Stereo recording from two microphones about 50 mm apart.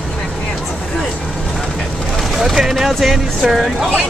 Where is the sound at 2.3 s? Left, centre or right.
Centre.